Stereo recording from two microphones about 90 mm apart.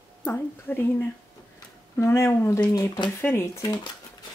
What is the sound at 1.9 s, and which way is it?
Speech, 30° left (ahead or behind).